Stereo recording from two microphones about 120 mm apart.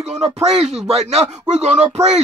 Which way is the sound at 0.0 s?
65° right (ahead or behind).